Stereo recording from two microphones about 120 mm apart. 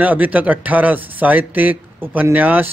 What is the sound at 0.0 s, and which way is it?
Speech, 15° right (ahead or behind).